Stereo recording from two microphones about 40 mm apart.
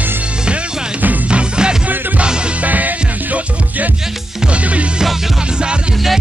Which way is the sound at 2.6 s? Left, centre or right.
Right.